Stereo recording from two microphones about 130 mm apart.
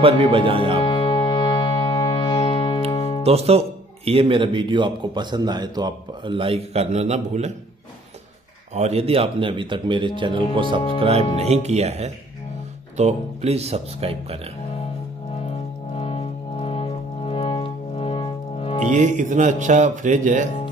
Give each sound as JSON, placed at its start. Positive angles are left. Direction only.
{"t": 0.0, "sound": "speech", "side_deg": -45}
{"t": 0.8, "sound": "music", "side_deg": 45}
{"t": 3.3, "sound": "a man's voice", "side_deg": -50}
{"t": 8.7, "sound": "a man's voice", "side_deg": -55}
{"t": 16.0, "sound": "music", "side_deg": 50}
{"t": 18.9, "sound": "speech", "side_deg": -70}